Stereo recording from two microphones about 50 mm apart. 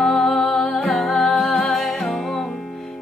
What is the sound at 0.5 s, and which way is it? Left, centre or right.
Music, centre.